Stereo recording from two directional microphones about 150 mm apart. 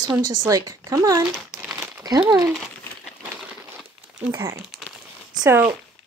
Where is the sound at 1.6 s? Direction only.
20° right (ahead or behind).